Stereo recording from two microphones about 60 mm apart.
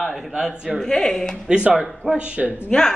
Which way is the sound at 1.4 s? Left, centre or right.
Centre.